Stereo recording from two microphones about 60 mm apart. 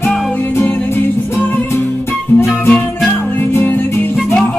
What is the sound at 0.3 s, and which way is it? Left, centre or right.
Music, left.